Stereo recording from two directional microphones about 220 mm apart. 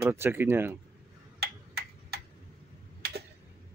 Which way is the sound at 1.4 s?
45° right (ahead or behind).